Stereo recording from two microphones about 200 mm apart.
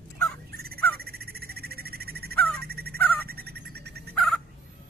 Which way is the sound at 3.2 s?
50° right (ahead or behind).